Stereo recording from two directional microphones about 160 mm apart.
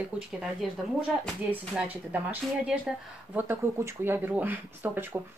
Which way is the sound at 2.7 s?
5° right (ahead or behind).